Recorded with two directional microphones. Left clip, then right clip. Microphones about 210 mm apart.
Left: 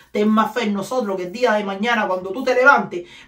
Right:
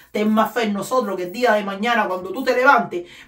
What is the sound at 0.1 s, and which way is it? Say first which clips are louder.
Speech: left 1 dB; 15° right (ahead or behind).